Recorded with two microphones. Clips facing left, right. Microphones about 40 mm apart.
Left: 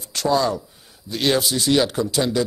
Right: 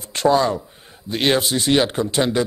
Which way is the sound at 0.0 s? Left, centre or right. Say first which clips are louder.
Right 3 dB; right.